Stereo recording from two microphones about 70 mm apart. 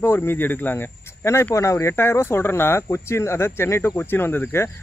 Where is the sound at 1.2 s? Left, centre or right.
Left.